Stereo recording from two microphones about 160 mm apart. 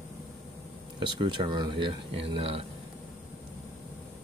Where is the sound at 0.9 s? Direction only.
30° right (ahead or behind).